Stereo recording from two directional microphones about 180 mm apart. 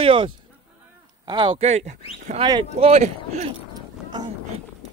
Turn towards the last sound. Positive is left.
turn(degrees=-40)  # may be behind; listen again after turning